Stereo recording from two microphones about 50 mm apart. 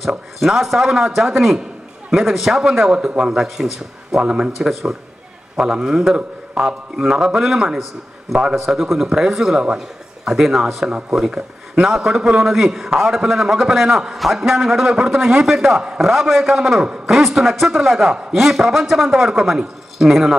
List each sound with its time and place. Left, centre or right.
0.4 s a man's voice: centre
4.6 s a man's voice: centre
16.8 s a man's voice: centre
17.1 s a man's voice: centre